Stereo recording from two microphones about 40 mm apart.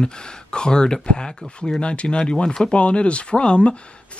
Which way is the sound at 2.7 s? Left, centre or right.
Left.